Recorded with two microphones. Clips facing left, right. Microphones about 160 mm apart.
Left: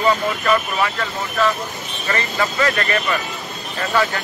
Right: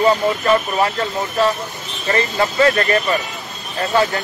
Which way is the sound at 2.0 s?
30° right (ahead or behind).